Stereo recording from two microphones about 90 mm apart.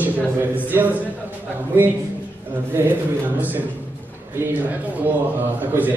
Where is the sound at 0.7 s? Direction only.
20° right (ahead or behind).